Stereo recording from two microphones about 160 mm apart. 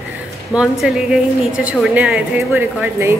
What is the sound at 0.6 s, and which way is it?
A woman's voice, centre (ahead or behind).